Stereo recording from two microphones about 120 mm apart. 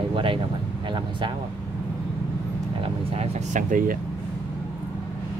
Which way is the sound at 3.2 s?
90° right.